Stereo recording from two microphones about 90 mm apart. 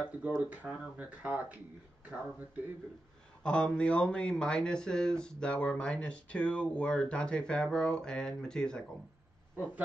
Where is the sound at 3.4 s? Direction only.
10° left (ahead or behind).